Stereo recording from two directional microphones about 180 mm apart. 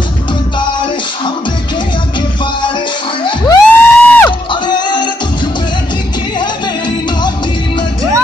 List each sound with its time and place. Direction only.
3.3 s music: 20° left (ahead or behind)
3.6 s music: 10° left (ahead or behind)
4.5 s music: 25° left (ahead or behind)